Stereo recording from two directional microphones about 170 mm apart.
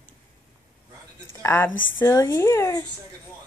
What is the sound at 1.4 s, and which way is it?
Speech, 15° left (ahead or behind).